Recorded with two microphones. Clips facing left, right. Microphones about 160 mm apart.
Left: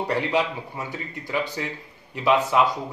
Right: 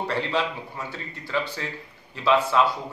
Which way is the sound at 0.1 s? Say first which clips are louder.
Left 4 dB; 15° left (ahead or behind).